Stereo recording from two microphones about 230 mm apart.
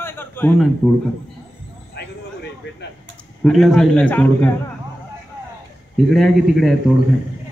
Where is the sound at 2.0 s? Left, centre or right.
Left.